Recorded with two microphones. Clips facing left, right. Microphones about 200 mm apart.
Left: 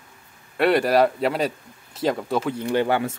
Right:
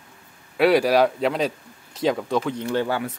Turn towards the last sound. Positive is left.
turn(degrees=25)  # may be behind; listen again after turning